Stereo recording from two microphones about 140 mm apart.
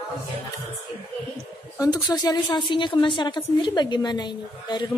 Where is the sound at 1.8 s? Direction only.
25° left (ahead or behind).